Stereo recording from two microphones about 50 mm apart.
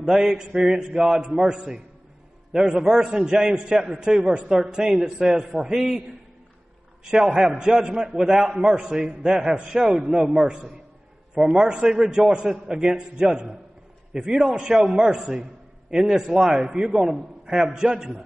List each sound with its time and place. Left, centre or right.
0.0 s a man's voice: centre
7.1 s a man's voice: centre
15.9 s a man's voice: centre